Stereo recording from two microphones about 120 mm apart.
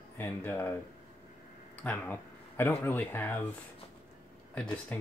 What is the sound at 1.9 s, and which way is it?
Speech, 15° left (ahead or behind).